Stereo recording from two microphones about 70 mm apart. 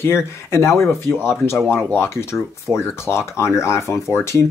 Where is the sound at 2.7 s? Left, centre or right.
Left.